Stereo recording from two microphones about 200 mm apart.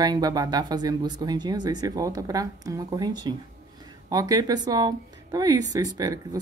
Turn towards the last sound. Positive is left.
turn(degrees=-20)  # may be behind; listen again after turning